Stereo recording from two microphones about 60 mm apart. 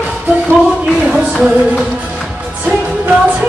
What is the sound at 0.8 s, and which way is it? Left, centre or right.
Music, centre.